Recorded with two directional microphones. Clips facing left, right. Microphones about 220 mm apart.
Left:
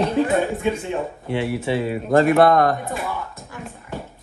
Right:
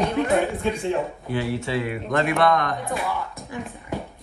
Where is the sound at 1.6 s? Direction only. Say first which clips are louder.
Left 4 dB; 25° left (ahead or behind).